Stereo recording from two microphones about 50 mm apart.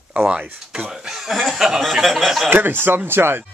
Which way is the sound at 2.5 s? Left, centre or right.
Right.